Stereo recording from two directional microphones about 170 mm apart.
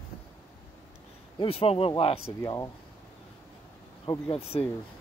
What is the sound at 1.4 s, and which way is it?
Speech, 35° left (ahead or behind).